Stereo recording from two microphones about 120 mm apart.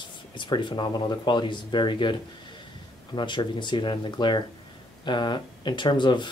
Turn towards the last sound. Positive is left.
turn(degrees=40)  # may be behind; listen again after turning